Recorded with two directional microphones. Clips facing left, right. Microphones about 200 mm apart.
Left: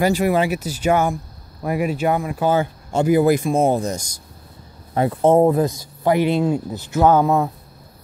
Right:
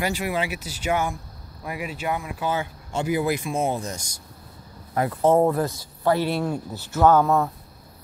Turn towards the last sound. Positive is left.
turn(degrees=15)  # may be behind; listen again after turning